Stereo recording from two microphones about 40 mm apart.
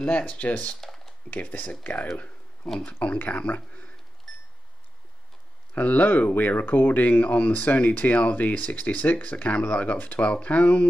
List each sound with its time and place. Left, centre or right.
0.0 s speech: left
0.7 s computer keyboard: centre
1.3 s speech: left
2.1 s a sound: left
2.8 s speech: left
4.3 s a sound: centre
5.8 s speech: left
9.9 s speech: left
10.2 s speech: left